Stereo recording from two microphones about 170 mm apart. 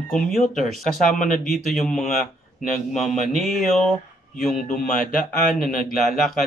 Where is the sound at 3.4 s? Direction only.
Centre (ahead or behind).